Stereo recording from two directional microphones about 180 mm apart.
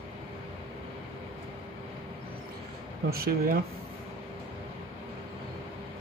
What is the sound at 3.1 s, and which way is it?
Speech, 55° right (ahead or behind).